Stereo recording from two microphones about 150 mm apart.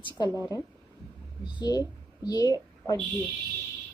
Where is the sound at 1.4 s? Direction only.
30° left (ahead or behind).